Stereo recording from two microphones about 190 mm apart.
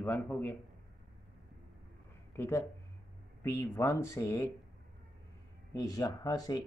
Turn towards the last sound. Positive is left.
turn(degrees=20)  # may be behind; listen again after turning